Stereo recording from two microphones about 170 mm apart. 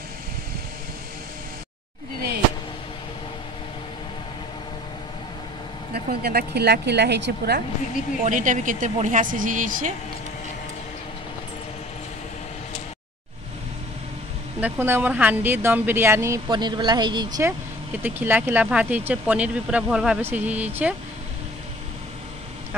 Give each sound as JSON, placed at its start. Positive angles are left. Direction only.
{"t": 6.0, "sound": "a woman's voice", "side_deg": -65}
{"t": 8.2, "sound": "speech", "side_deg": -50}
{"t": 14.6, "sound": "speech", "side_deg": -10}
{"t": 16.4, "sound": "speech", "side_deg": -25}
{"t": 18.0, "sound": "speech", "side_deg": -10}